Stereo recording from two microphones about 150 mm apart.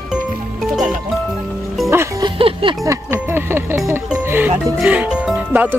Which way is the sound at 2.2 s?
35° right (ahead or behind).